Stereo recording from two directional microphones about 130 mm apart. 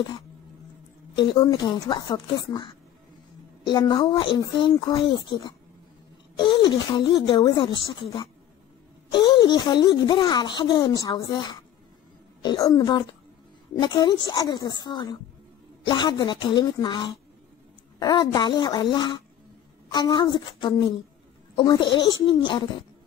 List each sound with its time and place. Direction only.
1.1 s a woman's voice: 40° left (ahead or behind)